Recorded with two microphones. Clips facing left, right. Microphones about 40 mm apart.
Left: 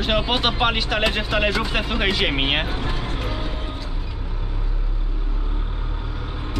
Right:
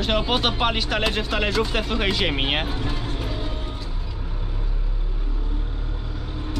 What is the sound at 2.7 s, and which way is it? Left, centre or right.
Vehicle, left.